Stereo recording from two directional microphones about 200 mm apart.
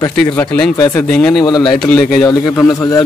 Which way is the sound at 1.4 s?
20° left (ahead or behind).